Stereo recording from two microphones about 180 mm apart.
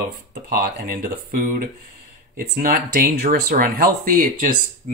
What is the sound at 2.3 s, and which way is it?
Speech, 55° right (ahead or behind).